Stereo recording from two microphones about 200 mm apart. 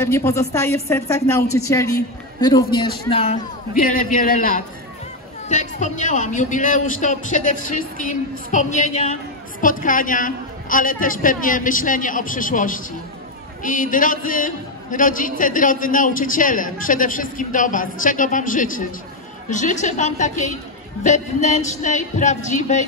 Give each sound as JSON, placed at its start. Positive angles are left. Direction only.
{"t": 0.0, "sound": "a woman's voice", "side_deg": 15}
{"t": 3.1, "sound": "speech", "side_deg": 30}
{"t": 3.7, "sound": "a man's voice", "side_deg": 45}